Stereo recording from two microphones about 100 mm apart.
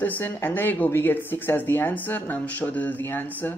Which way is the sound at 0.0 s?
20° left (ahead or behind).